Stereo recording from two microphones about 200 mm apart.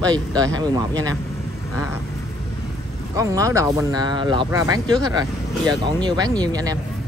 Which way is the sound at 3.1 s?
15° right (ahead or behind).